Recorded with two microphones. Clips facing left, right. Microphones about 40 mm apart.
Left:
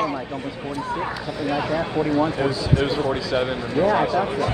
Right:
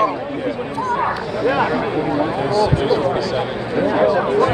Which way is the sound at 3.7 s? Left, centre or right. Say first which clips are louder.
Right 4 dB; centre.